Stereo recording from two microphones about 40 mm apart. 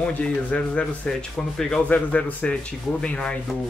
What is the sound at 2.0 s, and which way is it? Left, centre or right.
Speech, left.